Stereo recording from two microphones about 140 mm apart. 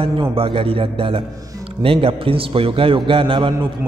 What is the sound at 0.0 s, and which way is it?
A man's voice, 40° right (ahead or behind).